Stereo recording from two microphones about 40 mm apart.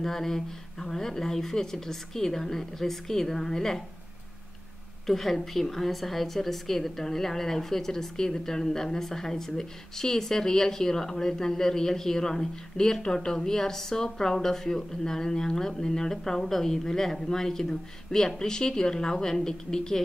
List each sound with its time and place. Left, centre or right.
0.0 s a woman's voice: centre
5.0 s a woman's voice: centre